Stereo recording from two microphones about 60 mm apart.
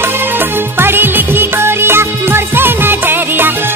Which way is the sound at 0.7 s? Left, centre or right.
Right.